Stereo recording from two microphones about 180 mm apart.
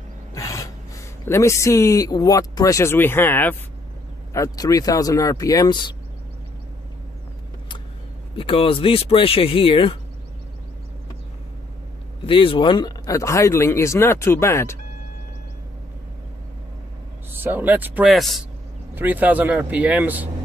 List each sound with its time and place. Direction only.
0.3 s a sound: 20° left (ahead or behind)
1.2 s speech: 15° left (ahead or behind)
8.4 s speech: 30° left (ahead or behind)
12.3 s speech: 30° left (ahead or behind)
17.3 s speech: 10° right (ahead or behind)